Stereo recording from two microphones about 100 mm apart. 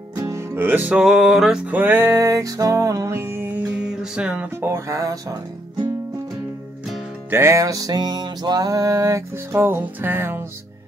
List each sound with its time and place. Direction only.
0.2 s music: 25° right (ahead or behind)
0.9 s music: 5° right (ahead or behind)
1.7 s music: 20° right (ahead or behind)
3.8 s music: 5° right (ahead or behind); by 5.2 s 35° right (ahead or behind)
7.2 s music: 25° right (ahead or behind)